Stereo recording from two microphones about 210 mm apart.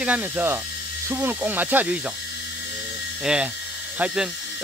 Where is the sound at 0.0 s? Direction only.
5° right (ahead or behind).